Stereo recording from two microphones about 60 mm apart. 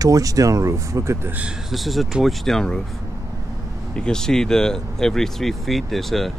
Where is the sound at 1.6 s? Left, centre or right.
Centre.